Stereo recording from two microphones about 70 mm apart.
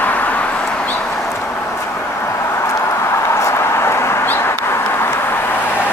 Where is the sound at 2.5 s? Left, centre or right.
Left.